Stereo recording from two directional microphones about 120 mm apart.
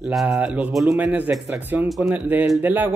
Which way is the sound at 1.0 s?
15° right (ahead or behind).